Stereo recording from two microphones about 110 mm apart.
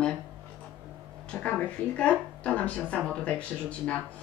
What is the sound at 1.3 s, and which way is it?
Speech, 10° left (ahead or behind).